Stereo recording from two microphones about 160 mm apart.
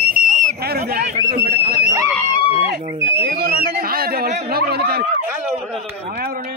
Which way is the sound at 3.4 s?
75° right (ahead or behind).